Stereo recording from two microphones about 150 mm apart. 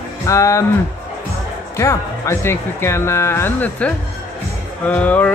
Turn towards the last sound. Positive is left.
turn(degrees=10)  # may be behind; listen again after turning